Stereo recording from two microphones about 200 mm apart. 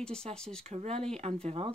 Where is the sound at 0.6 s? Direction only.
30° right (ahead or behind).